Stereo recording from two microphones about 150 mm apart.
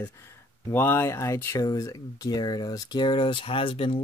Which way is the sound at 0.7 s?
15° left (ahead or behind).